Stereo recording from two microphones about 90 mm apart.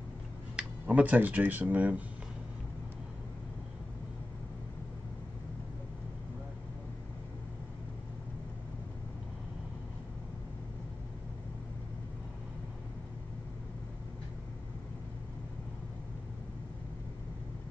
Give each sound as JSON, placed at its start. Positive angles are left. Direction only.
{"t": 0.6, "sound": "speech", "side_deg": -15}